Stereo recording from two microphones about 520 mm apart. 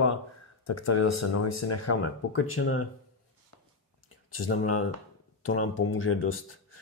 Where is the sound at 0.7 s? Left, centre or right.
Left.